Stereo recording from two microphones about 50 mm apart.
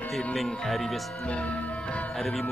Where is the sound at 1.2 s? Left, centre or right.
Left.